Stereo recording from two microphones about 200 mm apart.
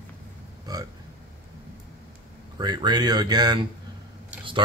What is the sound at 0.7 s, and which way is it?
Speech, 20° right (ahead or behind).